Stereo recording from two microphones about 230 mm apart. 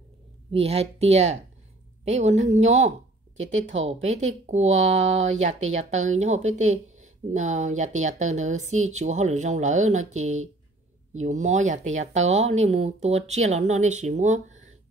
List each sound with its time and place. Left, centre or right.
0.5 s a woman's voice: right
4.0 s speech: right